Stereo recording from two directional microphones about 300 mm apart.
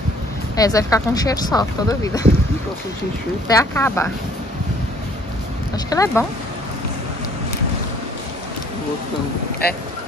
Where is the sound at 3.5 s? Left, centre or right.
Centre.